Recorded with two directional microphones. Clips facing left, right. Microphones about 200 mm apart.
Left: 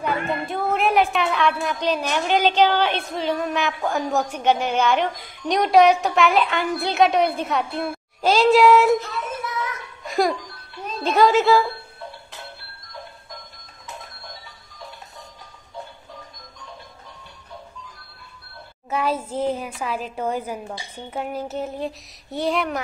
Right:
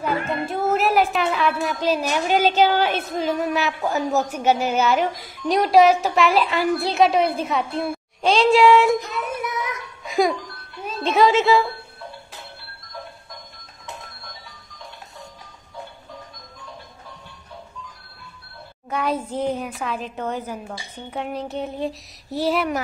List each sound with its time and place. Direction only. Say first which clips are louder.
0.0 s a sound: right 1 dB; centre (ahead or behind)
1.9 s a woman's voice: right 1 dB; 5° right (ahead or behind)
9.0 s child singing: right 2 dB; 20° right (ahead or behind)
10.0 s music: right 1 dB; centre (ahead or behind)
10.8 s speech: even; centre (ahead or behind)
18.9 s a woman's voice: even; 5° left (ahead or behind)